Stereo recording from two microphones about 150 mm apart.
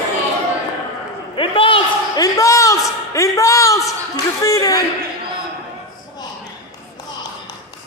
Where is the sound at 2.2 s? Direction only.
20° left (ahead or behind).